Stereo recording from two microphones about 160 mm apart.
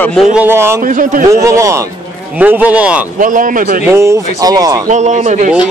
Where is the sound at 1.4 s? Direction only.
20° right (ahead or behind).